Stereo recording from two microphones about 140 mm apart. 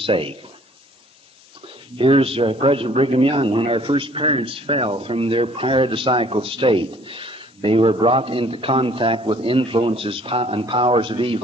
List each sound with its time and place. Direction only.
0.0 s a man's voice: 40° right (ahead or behind)
2.0 s a man's voice: 40° right (ahead or behind)